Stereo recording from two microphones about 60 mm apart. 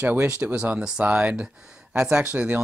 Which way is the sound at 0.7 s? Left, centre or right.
Right.